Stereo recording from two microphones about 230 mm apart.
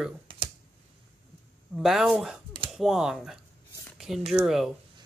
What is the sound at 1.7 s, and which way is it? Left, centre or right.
Speech, centre.